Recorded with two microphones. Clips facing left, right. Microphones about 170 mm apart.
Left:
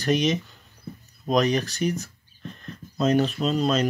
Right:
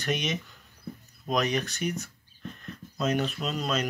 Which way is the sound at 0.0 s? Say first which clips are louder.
Left 8 dB; 35° left (ahead or behind).